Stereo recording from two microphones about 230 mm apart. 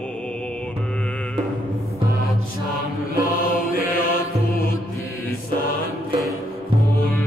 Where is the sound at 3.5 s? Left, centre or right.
Left.